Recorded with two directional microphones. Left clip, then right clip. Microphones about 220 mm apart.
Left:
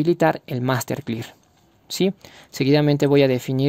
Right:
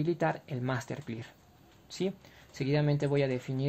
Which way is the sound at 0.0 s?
45° left (ahead or behind).